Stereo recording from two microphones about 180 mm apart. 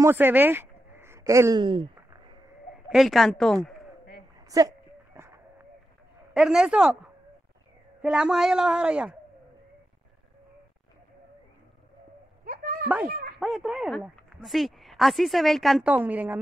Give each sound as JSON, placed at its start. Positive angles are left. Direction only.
{"t": 0.0, "sound": "speech", "side_deg": -10}
{"t": 2.7, "sound": "speech", "side_deg": 0}
{"t": 4.5, "sound": "a sound", "side_deg": -20}
{"t": 6.3, "sound": "speech", "side_deg": 0}
{"t": 8.0, "sound": "speech", "side_deg": -5}
{"t": 12.4, "sound": "a sound", "side_deg": -50}
{"t": 13.4, "sound": "speech", "side_deg": 0}